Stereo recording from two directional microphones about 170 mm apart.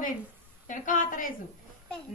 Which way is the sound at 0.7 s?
50° left (ahead or behind).